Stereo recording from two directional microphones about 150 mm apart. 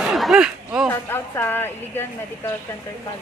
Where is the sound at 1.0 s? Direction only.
15° left (ahead or behind).